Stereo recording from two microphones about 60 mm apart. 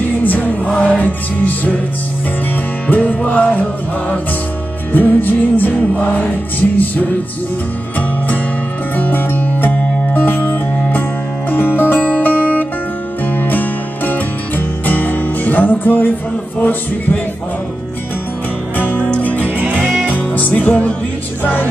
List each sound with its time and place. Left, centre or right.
0.2 s music: left
0.7 s music: centre
2.9 s music: left
4.9 s music: left
8.9 s music: left
18.8 s music: left
19.5 s music: right
20.1 s music: left